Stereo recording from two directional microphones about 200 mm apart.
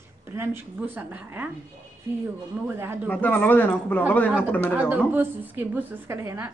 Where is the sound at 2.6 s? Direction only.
10° right (ahead or behind).